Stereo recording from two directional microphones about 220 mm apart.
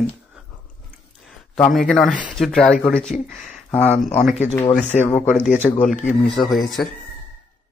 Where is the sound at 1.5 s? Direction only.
Centre (ahead or behind).